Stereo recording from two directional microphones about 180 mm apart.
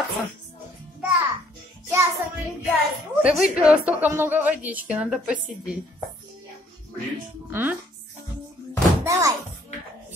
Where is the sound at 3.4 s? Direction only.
5° right (ahead or behind).